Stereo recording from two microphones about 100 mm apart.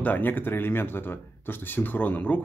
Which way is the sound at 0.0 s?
20° left (ahead or behind).